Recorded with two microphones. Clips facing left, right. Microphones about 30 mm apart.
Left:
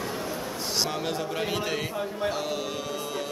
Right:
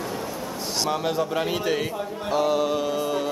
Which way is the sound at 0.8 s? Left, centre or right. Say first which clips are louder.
Right 5 dB; centre.